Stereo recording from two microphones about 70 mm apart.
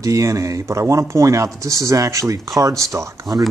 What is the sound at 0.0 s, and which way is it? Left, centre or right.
A man's voice, right.